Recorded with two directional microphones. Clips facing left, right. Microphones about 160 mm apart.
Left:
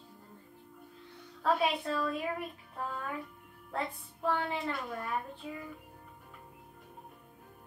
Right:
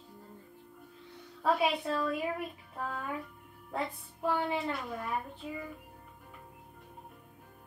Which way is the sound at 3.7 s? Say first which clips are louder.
Right 1 dB; 5° right (ahead or behind).